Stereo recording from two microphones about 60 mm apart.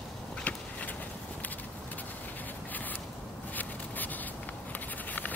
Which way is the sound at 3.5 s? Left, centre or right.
Left.